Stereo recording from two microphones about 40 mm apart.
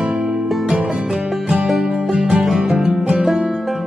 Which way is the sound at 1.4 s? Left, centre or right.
Centre.